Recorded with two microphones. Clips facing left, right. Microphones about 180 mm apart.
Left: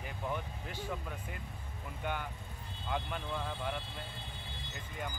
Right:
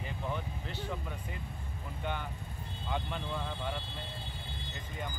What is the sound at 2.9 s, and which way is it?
Speech, centre (ahead or behind).